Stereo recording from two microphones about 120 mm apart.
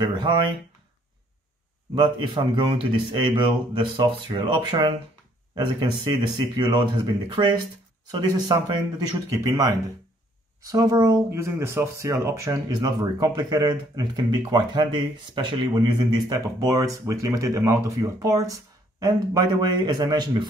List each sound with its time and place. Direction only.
2.0 s a man's voice: 40° right (ahead or behind)